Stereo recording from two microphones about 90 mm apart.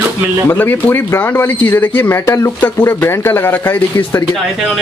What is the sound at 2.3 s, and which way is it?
Speech, 35° left (ahead or behind).